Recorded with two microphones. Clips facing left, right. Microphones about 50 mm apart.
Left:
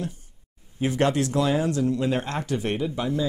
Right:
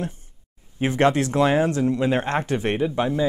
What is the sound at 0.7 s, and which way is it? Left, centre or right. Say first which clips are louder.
Speech: right 3 dB; right.